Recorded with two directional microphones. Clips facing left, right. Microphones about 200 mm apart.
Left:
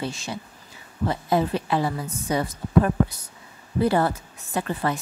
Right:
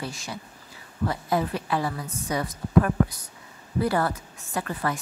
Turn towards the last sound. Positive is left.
turn(degrees=25)  # may be behind; listen again after turning